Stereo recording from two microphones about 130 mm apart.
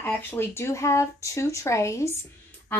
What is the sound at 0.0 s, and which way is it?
Speech, 15° left (ahead or behind).